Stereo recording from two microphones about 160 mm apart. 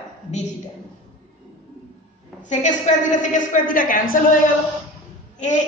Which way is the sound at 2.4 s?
50° left (ahead or behind).